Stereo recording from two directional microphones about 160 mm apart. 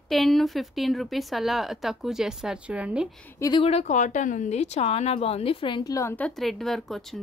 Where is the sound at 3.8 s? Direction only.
50° left (ahead or behind).